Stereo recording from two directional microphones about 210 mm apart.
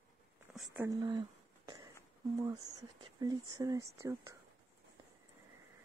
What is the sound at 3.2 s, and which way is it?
Speech, 15° right (ahead or behind).